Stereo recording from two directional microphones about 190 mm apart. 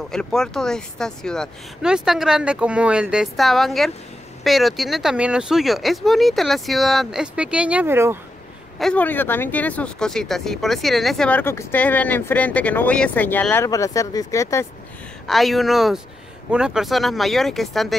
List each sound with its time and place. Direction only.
0.1 s speech: 5° left (ahead or behind)
8.7 s speech: 5° left (ahead or behind)
15.2 s speech: centre (ahead or behind)